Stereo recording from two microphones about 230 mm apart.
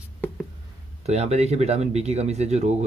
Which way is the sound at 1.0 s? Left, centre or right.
Right.